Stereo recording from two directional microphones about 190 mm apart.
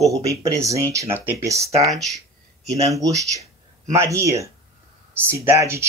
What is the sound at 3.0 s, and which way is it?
Speech, 15° right (ahead or behind).